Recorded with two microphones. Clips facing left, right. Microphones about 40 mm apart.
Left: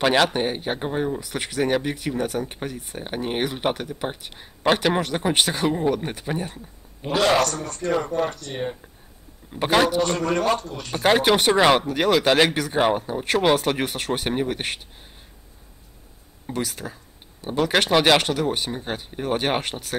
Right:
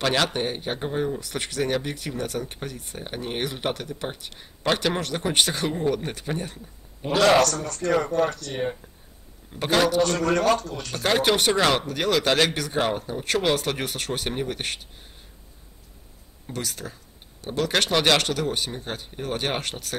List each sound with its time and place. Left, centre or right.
0.0 s speech: centre
7.8 s speech: centre
8.3 s speech: left
9.5 s speech: centre
16.4 s speech: centre